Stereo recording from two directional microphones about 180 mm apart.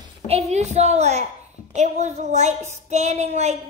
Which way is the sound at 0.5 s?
40° right (ahead or behind).